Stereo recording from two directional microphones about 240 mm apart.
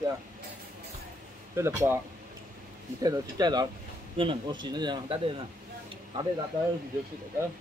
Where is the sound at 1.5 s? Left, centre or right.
Centre.